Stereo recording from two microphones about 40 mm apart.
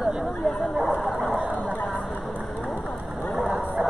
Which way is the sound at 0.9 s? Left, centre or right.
Left.